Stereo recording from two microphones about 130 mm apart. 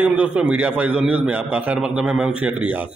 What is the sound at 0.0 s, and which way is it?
A man's voice, 10° right (ahead or behind).